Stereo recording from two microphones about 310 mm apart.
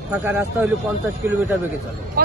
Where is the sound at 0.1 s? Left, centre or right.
Centre.